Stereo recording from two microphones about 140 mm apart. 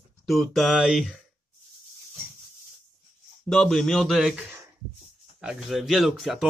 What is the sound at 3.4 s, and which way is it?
Speech, centre (ahead or behind).